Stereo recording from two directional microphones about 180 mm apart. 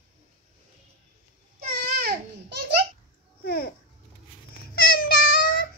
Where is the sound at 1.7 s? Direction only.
60° right (ahead or behind).